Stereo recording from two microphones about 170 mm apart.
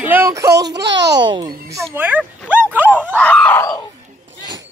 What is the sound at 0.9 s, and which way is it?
Speech, 90° right.